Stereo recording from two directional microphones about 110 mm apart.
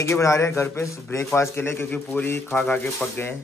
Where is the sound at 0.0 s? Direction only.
25° left (ahead or behind).